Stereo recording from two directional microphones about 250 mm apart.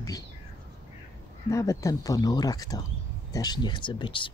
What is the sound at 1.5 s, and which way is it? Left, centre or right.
Speech, centre.